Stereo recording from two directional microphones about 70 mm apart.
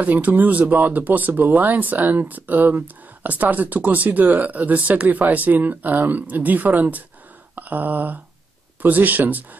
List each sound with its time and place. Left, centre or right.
0.0 s speech: right
7.5 s a sound: right
8.8 s speech: right